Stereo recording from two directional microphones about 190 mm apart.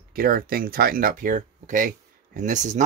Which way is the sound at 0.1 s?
50° right (ahead or behind).